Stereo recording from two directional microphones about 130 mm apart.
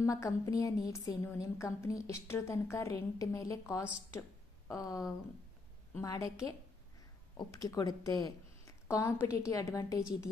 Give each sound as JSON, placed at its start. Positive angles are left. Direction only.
{"t": 0.0, "sound": "a woman's voice", "side_deg": 25}